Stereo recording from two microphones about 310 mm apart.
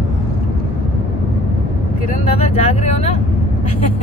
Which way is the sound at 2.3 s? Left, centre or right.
Left.